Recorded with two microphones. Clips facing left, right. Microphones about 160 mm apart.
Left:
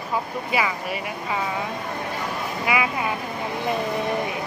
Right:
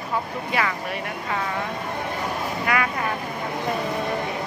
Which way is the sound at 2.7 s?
10° left (ahead or behind).